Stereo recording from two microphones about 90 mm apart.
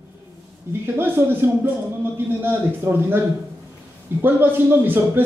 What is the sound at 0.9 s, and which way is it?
A man's voice, 25° right (ahead or behind).